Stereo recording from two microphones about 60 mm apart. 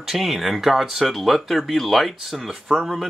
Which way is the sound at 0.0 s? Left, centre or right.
Centre.